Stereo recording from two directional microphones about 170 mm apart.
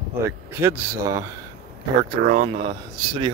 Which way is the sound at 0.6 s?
15° right (ahead or behind).